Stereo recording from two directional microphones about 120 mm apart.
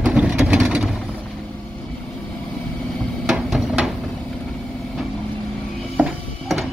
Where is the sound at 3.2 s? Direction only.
5° right (ahead or behind).